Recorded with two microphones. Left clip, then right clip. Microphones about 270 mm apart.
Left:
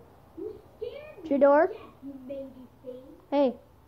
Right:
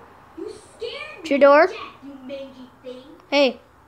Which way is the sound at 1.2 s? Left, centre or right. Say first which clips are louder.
Right 7 dB; centre.